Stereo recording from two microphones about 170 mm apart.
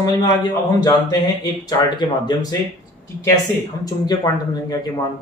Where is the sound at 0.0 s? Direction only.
25° left (ahead or behind).